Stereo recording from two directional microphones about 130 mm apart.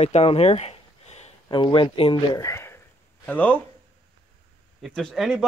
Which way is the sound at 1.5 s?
40° left (ahead or behind).